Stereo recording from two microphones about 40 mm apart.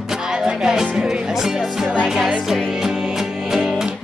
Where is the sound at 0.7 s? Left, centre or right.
Centre.